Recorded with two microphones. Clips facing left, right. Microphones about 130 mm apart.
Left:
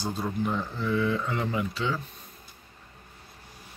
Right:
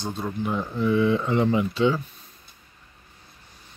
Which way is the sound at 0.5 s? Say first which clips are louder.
Right 5 dB; 15° right (ahead or behind).